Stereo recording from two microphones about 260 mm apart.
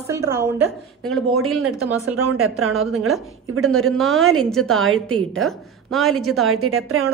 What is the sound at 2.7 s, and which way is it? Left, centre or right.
A woman's voice, centre.